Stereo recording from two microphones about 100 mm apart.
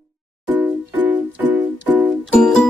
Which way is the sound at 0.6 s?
15° right (ahead or behind).